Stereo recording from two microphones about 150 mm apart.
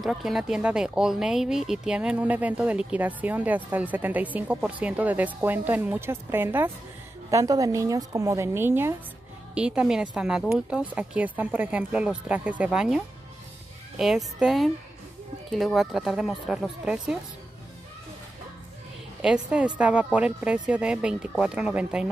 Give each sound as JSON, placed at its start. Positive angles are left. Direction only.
{"t": 0.0, "sound": "a woman's voice", "side_deg": 0}
{"t": 19.2, "sound": "speech", "side_deg": -5}